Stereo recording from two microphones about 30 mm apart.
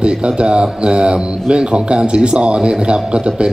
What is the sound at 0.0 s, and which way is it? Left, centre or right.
A man's voice, right.